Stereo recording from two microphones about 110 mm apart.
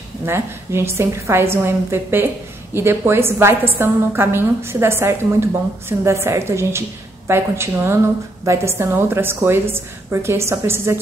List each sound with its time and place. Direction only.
0.2 s a woman's voice: 25° right (ahead or behind)